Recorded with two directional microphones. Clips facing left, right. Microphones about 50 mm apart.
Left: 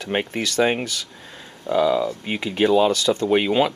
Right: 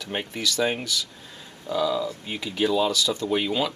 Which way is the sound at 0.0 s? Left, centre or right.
Left.